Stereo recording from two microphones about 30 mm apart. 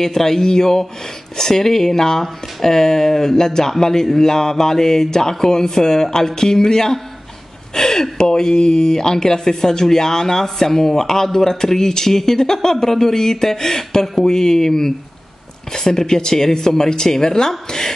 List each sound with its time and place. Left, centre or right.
0.0 s a man's voice: centre